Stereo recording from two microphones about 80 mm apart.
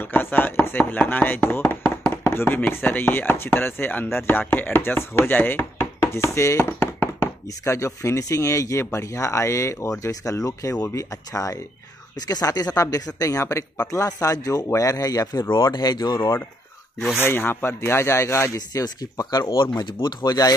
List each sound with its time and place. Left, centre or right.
0.0 s speech: left
7.6 s speech: left
15.5 s speech: left
16.2 s speech: left
19.5 s speech: left